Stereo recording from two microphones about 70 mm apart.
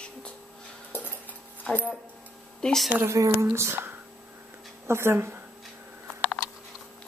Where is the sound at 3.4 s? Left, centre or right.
Right.